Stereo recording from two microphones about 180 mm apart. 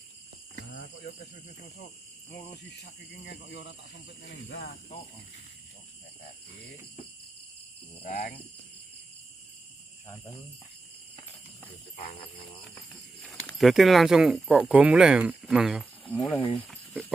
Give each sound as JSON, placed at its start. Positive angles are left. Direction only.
{"t": 0.6, "sound": "cricket", "side_deg": 75}
{"t": 1.2, "sound": "speech", "side_deg": 45}
{"t": 2.3, "sound": "speech", "side_deg": 60}
{"t": 8.0, "sound": "speech", "side_deg": 55}
{"t": 12.1, "sound": "jingle bell", "side_deg": 30}
{"t": 12.7, "sound": "speech", "side_deg": 5}
{"t": 15.8, "sound": "speech", "side_deg": 10}
{"t": 16.3, "sound": "speech", "side_deg": 30}
{"t": 16.6, "sound": "cricket", "side_deg": 0}